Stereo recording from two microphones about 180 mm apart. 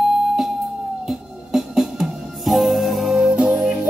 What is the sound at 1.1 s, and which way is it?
Music, 5° right (ahead or behind).